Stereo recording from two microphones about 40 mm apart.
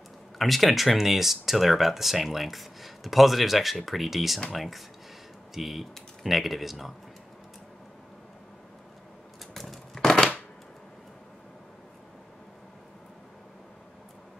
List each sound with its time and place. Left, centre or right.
0.4 s speech: centre
9.5 s a sound: centre
9.9 s chopping: centre